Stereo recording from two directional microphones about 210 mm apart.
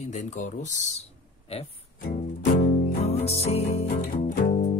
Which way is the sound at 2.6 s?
30° left (ahead or behind).